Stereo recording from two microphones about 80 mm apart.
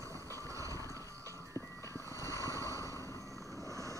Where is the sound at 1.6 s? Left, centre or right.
Left.